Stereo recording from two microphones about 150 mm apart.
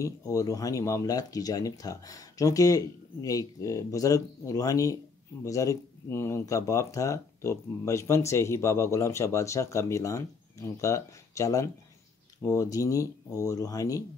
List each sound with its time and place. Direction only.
0.0 s speech: 20° left (ahead or behind)